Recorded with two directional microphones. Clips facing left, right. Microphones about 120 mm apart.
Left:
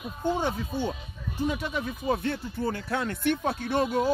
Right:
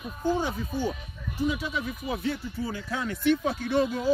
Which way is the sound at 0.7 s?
25° left (ahead or behind).